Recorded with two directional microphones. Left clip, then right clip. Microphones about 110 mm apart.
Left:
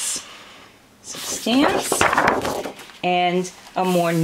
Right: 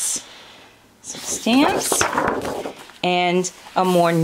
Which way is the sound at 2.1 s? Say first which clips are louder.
Left 3 dB; 20° left (ahead or behind).